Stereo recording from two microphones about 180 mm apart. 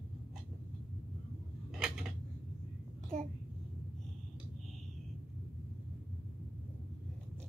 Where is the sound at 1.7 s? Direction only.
5° right (ahead or behind).